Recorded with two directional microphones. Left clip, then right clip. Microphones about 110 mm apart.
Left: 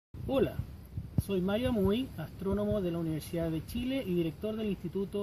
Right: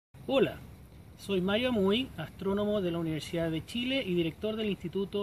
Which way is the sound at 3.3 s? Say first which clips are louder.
Right 3 dB; 15° left (ahead or behind).